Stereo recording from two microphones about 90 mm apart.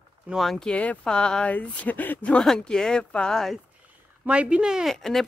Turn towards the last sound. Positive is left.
turn(degrees=5)  # may be behind; listen again after turning